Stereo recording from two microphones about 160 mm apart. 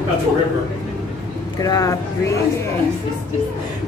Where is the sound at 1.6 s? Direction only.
25° left (ahead or behind).